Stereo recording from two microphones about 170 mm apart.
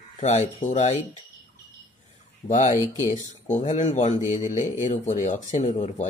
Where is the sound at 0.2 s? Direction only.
45° left (ahead or behind).